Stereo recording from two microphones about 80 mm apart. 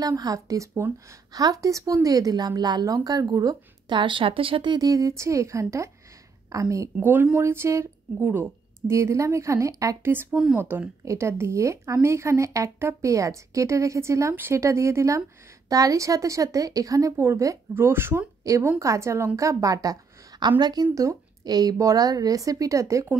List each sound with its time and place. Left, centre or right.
0.0 s a woman's voice: right
3.9 s speech: right
4.7 s a woman's voice: right
7.0 s a woman's voice: right
8.3 s speech: right
8.9 s a woman's voice: right
10.3 s speech: centre
11.1 s a woman's voice: right
18.4 s a woman's voice: right
20.9 s a woman's voice: right
21.5 s a woman's voice: right